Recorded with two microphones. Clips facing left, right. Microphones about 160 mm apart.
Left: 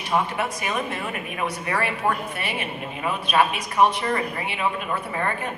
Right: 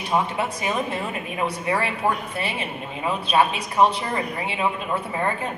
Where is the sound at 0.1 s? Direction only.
25° right (ahead or behind).